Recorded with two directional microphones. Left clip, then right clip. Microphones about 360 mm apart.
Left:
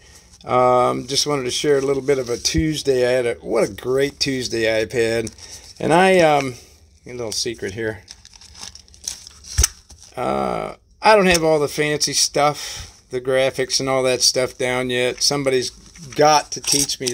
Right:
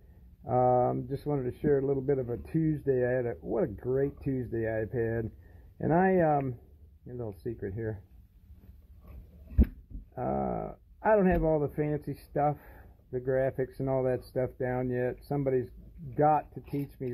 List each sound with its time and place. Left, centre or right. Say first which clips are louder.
0.5 s speech: left 10 dB; left
10.1 s speech: left 11 dB; centre